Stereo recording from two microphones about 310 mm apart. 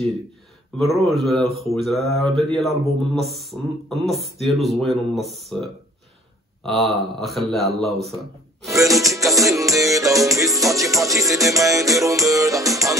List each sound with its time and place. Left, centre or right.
0.7 s a man's voice: centre
9.0 s music: centre